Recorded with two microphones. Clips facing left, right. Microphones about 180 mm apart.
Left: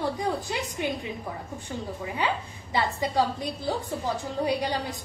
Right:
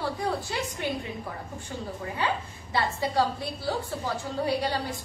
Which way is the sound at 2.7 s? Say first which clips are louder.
Left 1 dB; 15° left (ahead or behind).